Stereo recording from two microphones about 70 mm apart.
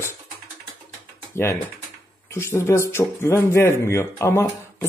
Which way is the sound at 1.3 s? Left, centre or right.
Left.